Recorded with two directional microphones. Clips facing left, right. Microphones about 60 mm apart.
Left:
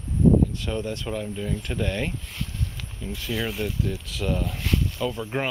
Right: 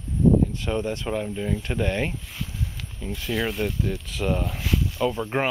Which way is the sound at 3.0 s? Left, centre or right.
Centre.